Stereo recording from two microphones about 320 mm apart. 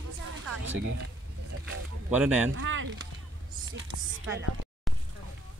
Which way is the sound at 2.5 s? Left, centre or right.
Right.